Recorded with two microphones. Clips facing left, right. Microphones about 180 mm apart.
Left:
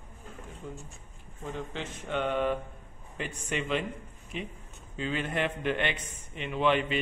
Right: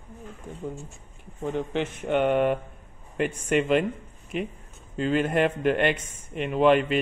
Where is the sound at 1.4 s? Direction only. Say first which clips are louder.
Right 9 dB; 60° right (ahead or behind).